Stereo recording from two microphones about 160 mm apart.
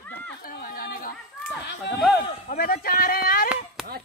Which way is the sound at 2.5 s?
70° left (ahead or behind).